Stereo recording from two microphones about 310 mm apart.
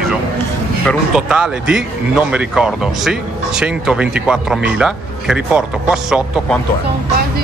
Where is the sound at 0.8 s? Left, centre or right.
Centre.